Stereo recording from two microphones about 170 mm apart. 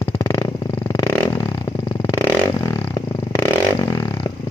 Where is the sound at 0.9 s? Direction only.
20° left (ahead or behind).